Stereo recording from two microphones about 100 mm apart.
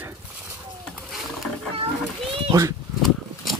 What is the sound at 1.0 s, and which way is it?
Wild animals, centre (ahead or behind).